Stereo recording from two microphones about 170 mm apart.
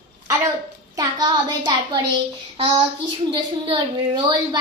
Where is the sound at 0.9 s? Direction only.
25° right (ahead or behind).